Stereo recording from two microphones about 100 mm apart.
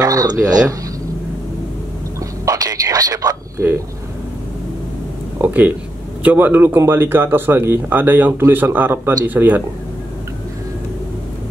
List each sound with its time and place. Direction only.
0.0 s speech: 40° right (ahead or behind)
2.1 s a sound: 35° right (ahead or behind)
5.4 s speech: 15° right (ahead or behind)